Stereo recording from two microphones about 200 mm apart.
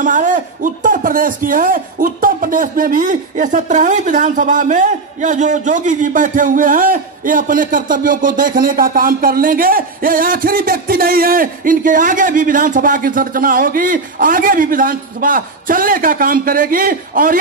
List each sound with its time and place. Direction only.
0.0 s speech: 40° right (ahead or behind)